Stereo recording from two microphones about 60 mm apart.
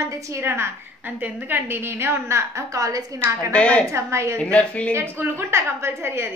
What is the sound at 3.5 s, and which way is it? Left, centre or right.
Speech, left.